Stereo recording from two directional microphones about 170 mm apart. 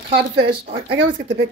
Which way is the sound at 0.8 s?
90° right.